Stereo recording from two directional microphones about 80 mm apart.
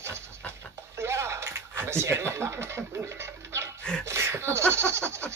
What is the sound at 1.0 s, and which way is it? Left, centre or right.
Chuckle, right.